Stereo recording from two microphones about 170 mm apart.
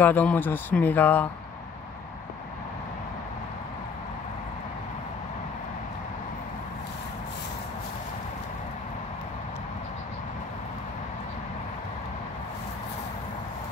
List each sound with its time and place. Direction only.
0.0 s speech: 10° left (ahead or behind)